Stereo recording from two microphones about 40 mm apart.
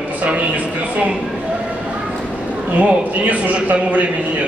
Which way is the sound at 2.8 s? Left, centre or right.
Right.